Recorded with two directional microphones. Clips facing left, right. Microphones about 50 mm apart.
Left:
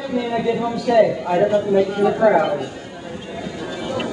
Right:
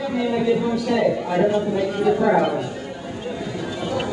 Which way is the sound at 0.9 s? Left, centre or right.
Centre.